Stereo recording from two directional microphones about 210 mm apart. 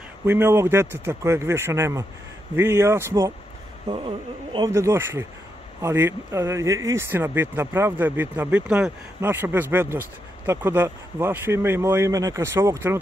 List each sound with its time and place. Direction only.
0.2 s speech: 10° right (ahead or behind)
3.9 s a sound: 25° right (ahead or behind)
4.6 s speech: 15° right (ahead or behind)